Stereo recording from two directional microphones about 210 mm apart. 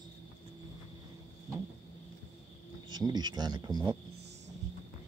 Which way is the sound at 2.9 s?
20° right (ahead or behind).